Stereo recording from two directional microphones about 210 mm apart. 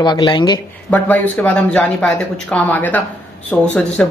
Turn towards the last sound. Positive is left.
turn(degrees=5)  # may be behind; listen again after turning